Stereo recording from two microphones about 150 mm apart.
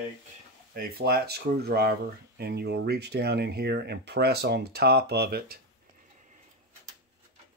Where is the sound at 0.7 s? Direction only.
90° right.